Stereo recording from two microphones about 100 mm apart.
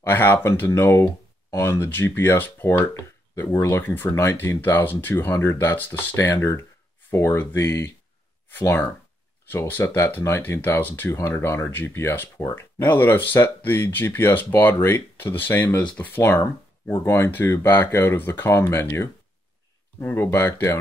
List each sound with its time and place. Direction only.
0.0 s speech: 20° left (ahead or behind)
8.5 s speech: 20° left (ahead or behind)